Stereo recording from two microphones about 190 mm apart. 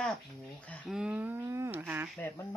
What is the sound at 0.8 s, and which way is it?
Speech, 5° right (ahead or behind).